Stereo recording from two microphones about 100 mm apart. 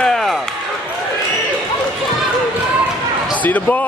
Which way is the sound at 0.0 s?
5° left (ahead or behind).